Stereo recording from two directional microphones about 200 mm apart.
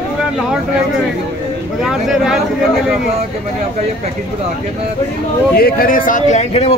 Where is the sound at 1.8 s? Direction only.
Centre (ahead or behind).